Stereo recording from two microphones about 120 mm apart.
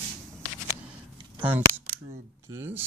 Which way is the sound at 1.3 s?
15° right (ahead or behind).